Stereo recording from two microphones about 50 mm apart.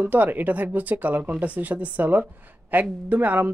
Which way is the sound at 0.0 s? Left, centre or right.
Right.